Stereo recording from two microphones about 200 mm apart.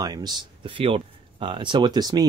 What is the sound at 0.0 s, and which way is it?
Speech, 20° right (ahead or behind).